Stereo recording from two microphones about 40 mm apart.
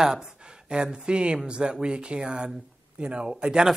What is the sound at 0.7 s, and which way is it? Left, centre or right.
Speech, right.